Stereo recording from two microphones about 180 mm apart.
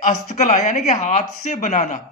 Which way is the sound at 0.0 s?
40° left (ahead or behind).